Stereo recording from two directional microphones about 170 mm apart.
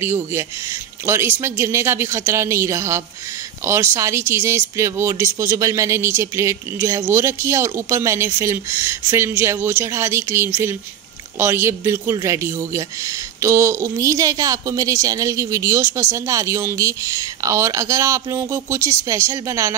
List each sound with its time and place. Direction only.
0.0 s speech: 15° right (ahead or behind)